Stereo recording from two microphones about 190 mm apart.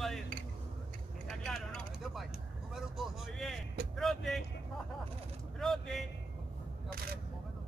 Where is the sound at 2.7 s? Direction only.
Centre (ahead or behind).